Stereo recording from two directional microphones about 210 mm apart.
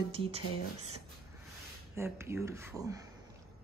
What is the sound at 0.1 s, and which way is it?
Speech, 25° right (ahead or behind).